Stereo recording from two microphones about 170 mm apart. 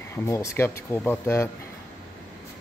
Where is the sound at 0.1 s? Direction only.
15° left (ahead or behind).